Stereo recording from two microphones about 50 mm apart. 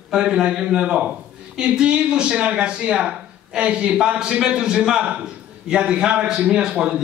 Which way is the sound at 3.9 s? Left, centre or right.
Centre.